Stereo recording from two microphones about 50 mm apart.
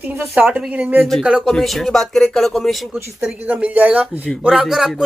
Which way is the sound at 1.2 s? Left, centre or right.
Centre.